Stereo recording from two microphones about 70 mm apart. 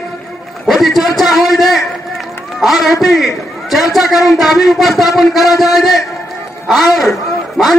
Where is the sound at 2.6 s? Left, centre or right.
Centre.